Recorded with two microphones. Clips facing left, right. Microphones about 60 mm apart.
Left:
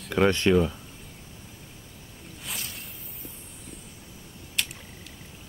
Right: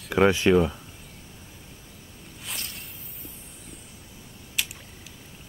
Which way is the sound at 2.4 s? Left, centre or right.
Centre.